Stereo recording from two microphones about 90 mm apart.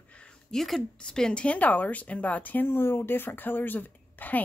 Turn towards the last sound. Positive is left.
turn(degrees=20)  # may be behind; listen again after turning